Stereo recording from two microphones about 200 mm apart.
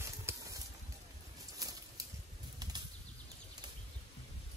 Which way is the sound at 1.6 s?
20° right (ahead or behind).